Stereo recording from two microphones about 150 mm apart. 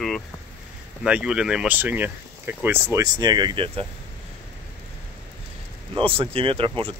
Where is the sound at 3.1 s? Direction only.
30° right (ahead or behind).